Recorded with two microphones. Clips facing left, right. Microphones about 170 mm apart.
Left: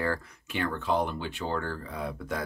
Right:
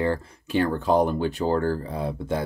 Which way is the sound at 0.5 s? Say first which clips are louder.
Right 8 dB; 35° right (ahead or behind).